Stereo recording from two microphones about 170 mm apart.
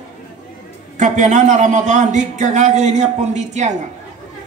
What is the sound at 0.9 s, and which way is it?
Speech, 45° right (ahead or behind).